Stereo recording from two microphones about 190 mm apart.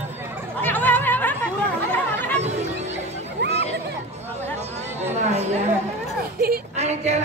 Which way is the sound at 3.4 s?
65° right (ahead or behind).